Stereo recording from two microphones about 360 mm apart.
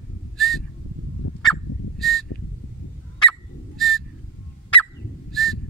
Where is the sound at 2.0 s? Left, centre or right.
Centre.